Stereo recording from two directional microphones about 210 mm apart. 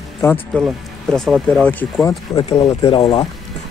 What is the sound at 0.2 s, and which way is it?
Speech, 10° left (ahead or behind).